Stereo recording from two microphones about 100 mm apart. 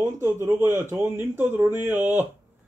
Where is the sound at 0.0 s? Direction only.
25° right (ahead or behind).